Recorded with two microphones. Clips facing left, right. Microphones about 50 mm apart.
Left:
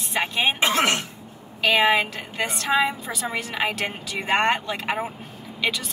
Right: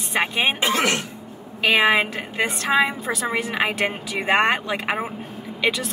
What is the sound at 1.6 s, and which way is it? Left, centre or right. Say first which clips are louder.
A woman's voice: right 1 dB; centre.